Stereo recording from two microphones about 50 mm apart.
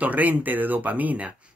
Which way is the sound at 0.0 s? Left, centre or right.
Right.